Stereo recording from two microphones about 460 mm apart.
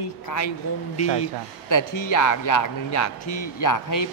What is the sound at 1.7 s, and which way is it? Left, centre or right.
A man's voice, left.